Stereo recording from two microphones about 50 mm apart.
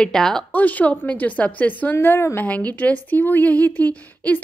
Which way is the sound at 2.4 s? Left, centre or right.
Left.